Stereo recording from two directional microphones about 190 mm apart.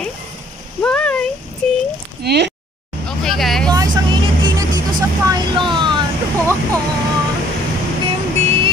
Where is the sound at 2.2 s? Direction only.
60° right (ahead or behind).